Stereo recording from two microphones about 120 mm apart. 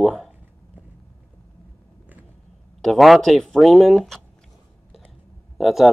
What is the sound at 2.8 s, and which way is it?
A man's voice, centre (ahead or behind).